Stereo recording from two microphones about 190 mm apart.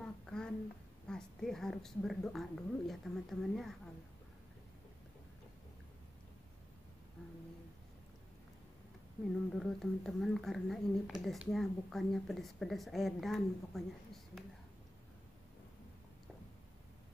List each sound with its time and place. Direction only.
0.0 s a sound: 5° left (ahead or behind)
1.0 s speech: 5° left (ahead or behind)
9.5 s speech: centre (ahead or behind)